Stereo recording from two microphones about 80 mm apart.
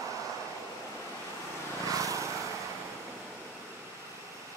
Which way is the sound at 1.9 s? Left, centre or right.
Right.